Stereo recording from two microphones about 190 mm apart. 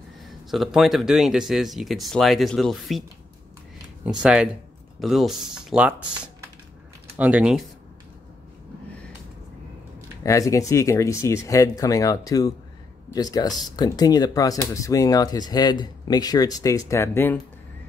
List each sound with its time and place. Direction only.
0.5 s speech: centre (ahead or behind)
4.0 s speech: 5° right (ahead or behind)
7.2 s speech: 5° right (ahead or behind)
10.2 s speech: 15° left (ahead or behind)